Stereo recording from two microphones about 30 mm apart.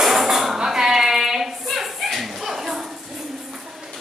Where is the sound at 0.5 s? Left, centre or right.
Centre.